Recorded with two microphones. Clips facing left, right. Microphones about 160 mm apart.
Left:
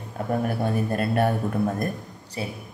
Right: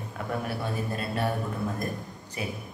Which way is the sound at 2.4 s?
30° left (ahead or behind).